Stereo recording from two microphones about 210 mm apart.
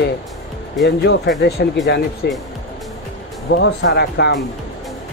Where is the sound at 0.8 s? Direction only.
55° left (ahead or behind).